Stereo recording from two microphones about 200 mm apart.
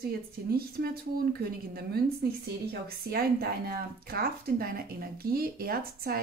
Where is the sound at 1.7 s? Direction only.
50° right (ahead or behind).